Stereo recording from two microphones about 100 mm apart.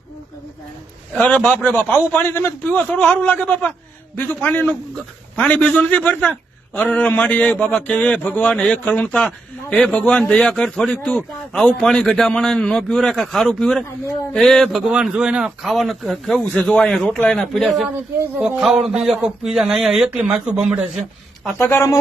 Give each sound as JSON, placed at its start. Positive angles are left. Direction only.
{"t": 1.1, "sound": "a man's voice", "side_deg": 5}
{"t": 2.1, "sound": "a man's voice", "side_deg": 20}
{"t": 14.9, "sound": "a man's voice", "side_deg": -10}
{"t": 17.8, "sound": "speech", "side_deg": -20}
{"t": 18.6, "sound": "a man's voice", "side_deg": -5}
{"t": 21.5, "sound": "speech", "side_deg": 25}